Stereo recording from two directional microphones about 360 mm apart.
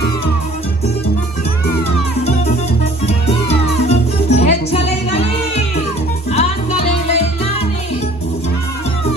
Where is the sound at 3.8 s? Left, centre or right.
Centre.